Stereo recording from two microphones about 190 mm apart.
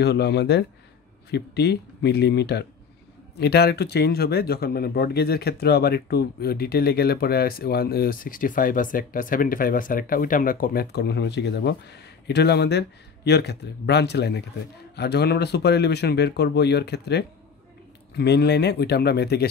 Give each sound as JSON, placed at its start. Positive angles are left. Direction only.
{"t": 0.0, "sound": "speech", "side_deg": 60}